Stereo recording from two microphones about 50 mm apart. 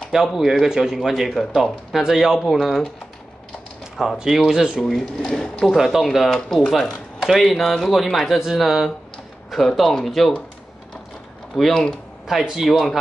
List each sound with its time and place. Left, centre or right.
0.1 s speech: centre
1.3 s speech: centre
2.4 s speech: centre
4.0 s speech: centre
5.2 s speech: centre
5.8 s speech: centre
11.5 s speech: centre
12.3 s speech: centre